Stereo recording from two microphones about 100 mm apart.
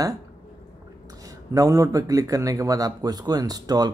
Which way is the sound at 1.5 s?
35° right (ahead or behind).